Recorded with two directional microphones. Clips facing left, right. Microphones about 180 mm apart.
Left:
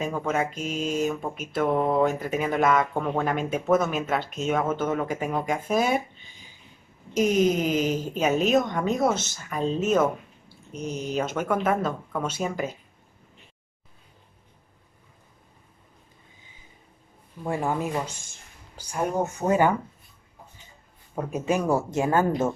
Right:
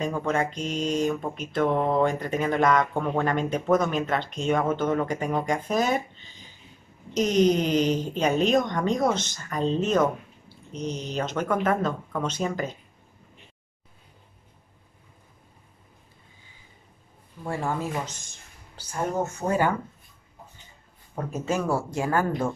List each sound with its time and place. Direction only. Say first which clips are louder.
0.0 s speech: right 1 dB; 5° left (ahead or behind)
17.4 s speech: left 2 dB; 15° left (ahead or behind)
21.1 s speech: left 2 dB; 10° left (ahead or behind)